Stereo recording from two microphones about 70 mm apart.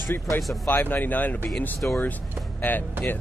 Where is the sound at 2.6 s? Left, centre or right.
Left.